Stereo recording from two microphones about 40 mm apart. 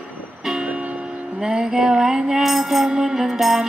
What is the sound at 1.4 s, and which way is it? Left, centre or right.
Music, centre.